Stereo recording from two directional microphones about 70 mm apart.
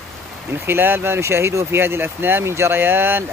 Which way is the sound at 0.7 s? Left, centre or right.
Right.